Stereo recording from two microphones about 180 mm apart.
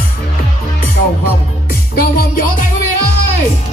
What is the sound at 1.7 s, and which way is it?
Music, 55° left (ahead or behind).